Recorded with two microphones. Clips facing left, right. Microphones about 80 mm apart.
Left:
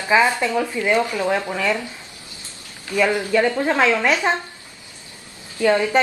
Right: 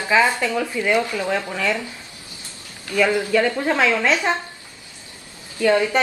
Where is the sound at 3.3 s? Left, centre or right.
Centre.